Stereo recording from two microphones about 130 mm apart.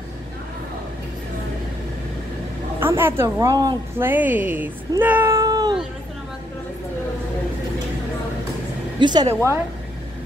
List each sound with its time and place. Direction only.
2.8 s a woman's voice: 15° right (ahead or behind)
4.0 s speech: 15° right (ahead or behind)
5.3 s cat: 30° right (ahead or behind)
9.0 s a woman's voice: 35° right (ahead or behind)